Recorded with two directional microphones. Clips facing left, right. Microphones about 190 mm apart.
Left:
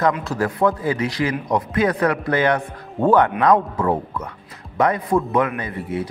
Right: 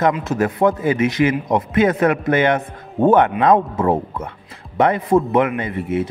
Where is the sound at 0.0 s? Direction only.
20° right (ahead or behind).